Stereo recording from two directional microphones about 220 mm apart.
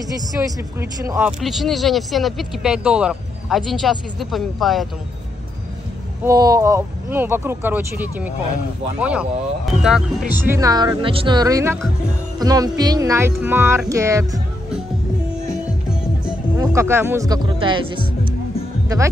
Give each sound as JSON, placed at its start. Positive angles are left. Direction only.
{"t": 0.7, "sound": "speech", "side_deg": -10}
{"t": 1.4, "sound": "speech", "side_deg": 0}
{"t": 6.2, "sound": "speech", "side_deg": -15}
{"t": 16.5, "sound": "speech", "side_deg": -15}